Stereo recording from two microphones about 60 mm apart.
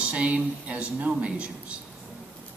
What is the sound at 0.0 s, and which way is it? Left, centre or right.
Speech, centre.